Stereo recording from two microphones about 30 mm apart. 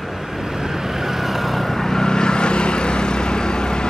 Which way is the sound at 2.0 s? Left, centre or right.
Left.